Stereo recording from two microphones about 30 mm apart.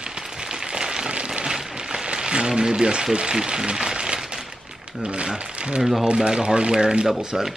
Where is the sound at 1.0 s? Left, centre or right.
Right.